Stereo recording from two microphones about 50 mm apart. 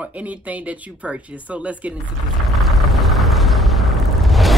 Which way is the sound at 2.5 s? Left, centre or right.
Centre.